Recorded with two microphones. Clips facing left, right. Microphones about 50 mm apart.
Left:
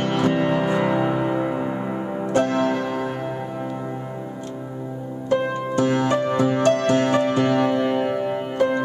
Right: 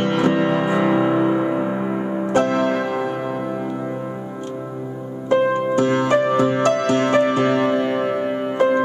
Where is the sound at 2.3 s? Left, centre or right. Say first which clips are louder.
Right 2 dB; right.